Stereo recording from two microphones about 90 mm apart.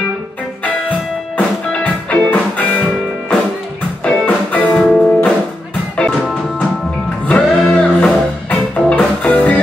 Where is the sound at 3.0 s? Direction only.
Centre (ahead or behind).